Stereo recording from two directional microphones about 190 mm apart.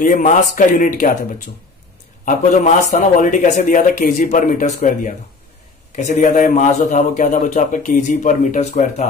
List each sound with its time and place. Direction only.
0.0 s speech: 45° left (ahead or behind)
2.2 s a man's voice: 40° left (ahead or behind)